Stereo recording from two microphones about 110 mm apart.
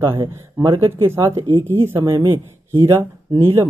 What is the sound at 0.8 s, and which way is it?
A man's voice, 20° right (ahead or behind).